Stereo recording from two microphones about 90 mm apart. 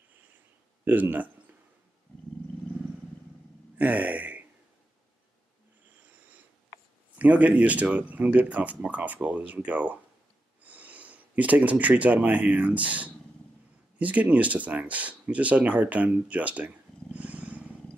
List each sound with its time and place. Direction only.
0.8 s speech: 20° right (ahead or behind)
3.7 s a sound: 15° right (ahead or behind)
7.2 s speech: 15° right (ahead or behind)